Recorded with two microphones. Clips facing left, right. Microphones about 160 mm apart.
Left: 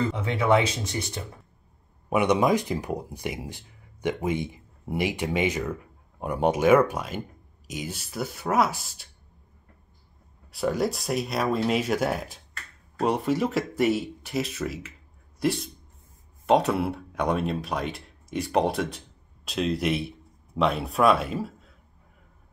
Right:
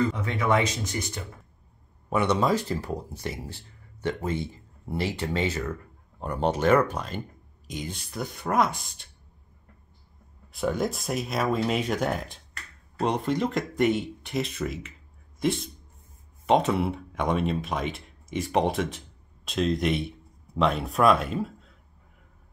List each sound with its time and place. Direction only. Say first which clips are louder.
0.2 s speech: left 2 dB; 25° left (ahead or behind)
2.0 s speech: left 2 dB; 15° left (ahead or behind)
10.5 s speech: left 1 dB; centre (ahead or behind)